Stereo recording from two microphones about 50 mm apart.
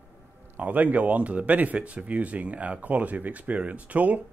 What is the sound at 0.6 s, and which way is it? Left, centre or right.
Speech, right.